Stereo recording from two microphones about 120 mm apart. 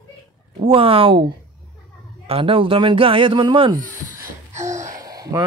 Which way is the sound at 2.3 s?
45° right (ahead or behind).